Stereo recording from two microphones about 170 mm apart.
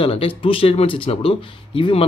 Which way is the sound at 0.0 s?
30° left (ahead or behind).